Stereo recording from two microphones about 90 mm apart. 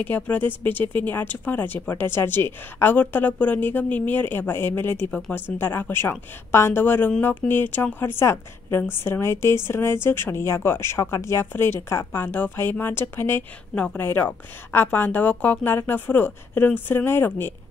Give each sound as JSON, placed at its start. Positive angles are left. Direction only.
{"t": 0.0, "sound": "speech", "side_deg": 20}